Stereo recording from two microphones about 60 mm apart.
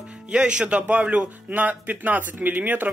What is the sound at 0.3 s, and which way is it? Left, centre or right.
Speech, centre.